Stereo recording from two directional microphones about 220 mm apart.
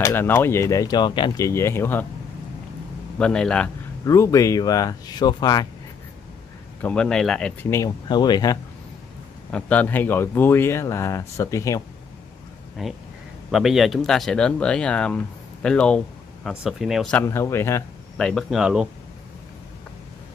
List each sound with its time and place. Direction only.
0.0 s speech: 10° left (ahead or behind)
3.2 s speech: 5° left (ahead or behind)
6.8 s speech: 5° left (ahead or behind)
7.8 s speech: 20° left (ahead or behind)
9.5 s speech: 5° left (ahead or behind)
12.8 s speech: centre (ahead or behind)